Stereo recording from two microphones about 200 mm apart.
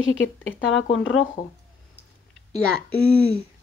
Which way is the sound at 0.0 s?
75° left (ahead or behind).